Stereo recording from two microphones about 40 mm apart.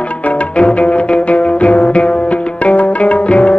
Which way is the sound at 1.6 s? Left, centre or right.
Centre.